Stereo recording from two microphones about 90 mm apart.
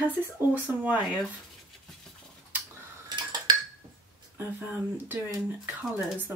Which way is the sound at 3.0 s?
50° right (ahead or behind).